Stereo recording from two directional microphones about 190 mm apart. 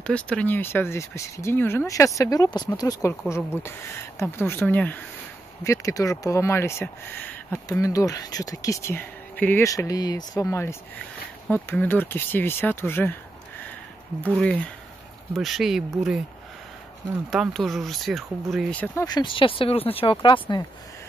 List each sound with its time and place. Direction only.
0.0 s speech: 5° left (ahead or behind)
15.3 s speech: centre (ahead or behind)
17.3 s speech: centre (ahead or behind)
19.0 s speech: 25° left (ahead or behind)